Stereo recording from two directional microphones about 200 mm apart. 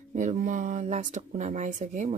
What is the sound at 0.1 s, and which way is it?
Speech, 40° right (ahead or behind).